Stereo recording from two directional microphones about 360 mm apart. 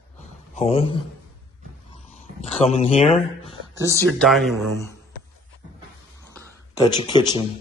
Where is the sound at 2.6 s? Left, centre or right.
Centre.